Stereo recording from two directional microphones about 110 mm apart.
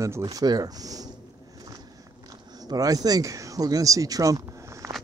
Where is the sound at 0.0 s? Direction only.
30° right (ahead or behind).